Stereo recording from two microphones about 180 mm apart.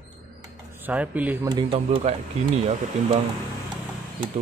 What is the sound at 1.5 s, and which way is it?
Speech, 30° right (ahead or behind).